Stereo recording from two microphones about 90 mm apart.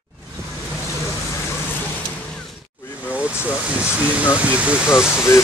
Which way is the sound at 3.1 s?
15° right (ahead or behind).